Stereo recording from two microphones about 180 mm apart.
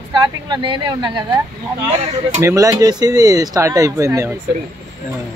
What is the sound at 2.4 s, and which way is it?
Speech, 15° right (ahead or behind).